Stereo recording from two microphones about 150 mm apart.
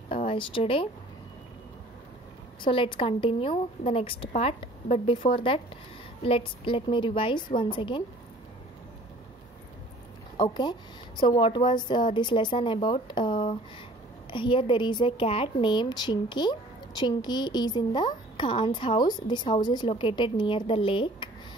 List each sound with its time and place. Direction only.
0.3 s speech: 35° left (ahead or behind)
2.6 s a woman's voice: 35° left (ahead or behind)
10.5 s a woman's voice: 30° left (ahead or behind)